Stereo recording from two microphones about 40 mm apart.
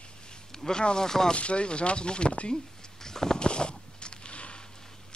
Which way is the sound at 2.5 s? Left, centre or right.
Centre.